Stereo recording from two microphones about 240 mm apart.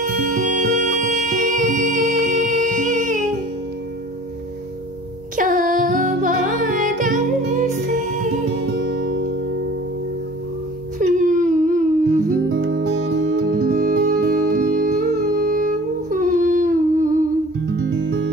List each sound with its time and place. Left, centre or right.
0.0 s music: right
5.3 s music: right
11.0 s whimper: right
12.3 s music: right
17.8 s music: right